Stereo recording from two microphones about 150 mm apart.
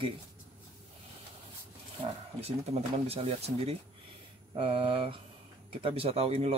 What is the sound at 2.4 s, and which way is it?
Speech, 45° right (ahead or behind).